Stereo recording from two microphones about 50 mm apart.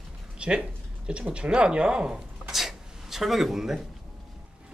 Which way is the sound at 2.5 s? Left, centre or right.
Centre.